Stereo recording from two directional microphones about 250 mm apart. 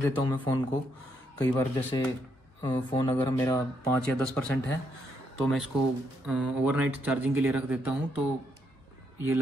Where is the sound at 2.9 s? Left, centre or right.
Centre.